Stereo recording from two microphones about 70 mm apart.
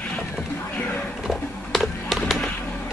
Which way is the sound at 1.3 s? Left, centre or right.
Centre.